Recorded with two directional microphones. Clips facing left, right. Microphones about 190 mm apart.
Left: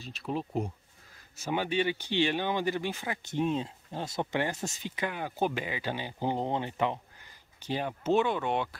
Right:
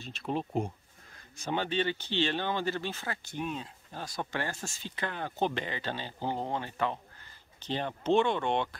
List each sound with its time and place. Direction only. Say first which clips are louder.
0.2 s speech: right 1 dB; centre (ahead or behind)
3.3 s speech: left 9 dB; 25° left (ahead or behind); by 8.6 s 5° left (ahead or behind)